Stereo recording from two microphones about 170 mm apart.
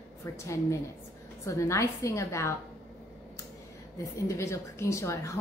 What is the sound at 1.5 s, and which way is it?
A woman's voice, 20° left (ahead or behind).